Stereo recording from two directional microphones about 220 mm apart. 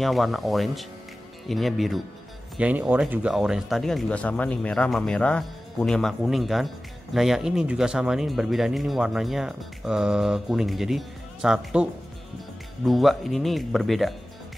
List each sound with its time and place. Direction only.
0.0 s speech: centre (ahead or behind)